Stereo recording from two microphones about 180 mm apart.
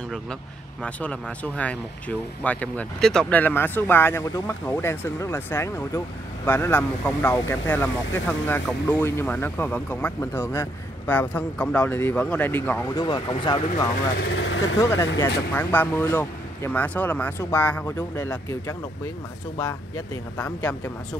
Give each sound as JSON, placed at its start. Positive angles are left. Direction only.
{"t": 0.8, "sound": "speech", "side_deg": 5}
{"t": 12.9, "sound": "speech", "side_deg": 25}
{"t": 14.3, "sound": "speech", "side_deg": 90}
{"t": 14.8, "sound": "speech", "side_deg": 15}
{"t": 20.3, "sound": "speech", "side_deg": 5}